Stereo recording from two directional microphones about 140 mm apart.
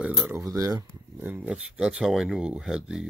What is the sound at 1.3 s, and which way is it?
Speech, 10° right (ahead or behind).